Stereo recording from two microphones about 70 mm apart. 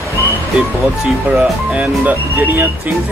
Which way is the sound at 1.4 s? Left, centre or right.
Centre.